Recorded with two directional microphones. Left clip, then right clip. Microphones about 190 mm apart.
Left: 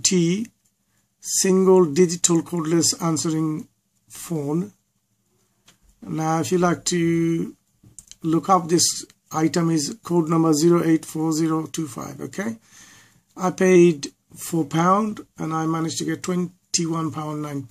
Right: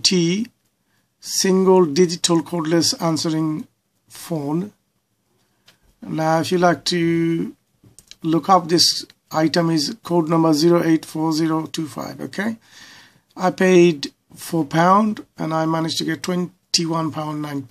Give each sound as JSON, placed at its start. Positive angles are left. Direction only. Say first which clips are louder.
{"t": 0.0, "sound": "speech", "louder": "right 3 dB", "side_deg": -15}
{"t": 5.9, "sound": "speech", "louder": "right 5 dB", "side_deg": -15}